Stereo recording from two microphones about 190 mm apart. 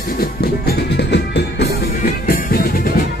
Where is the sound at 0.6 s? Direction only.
60° left (ahead or behind).